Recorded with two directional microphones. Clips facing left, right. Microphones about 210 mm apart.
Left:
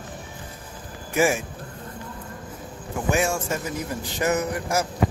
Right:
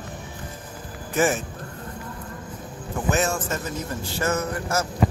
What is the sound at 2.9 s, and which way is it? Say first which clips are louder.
Speech: even; 10° left (ahead or behind).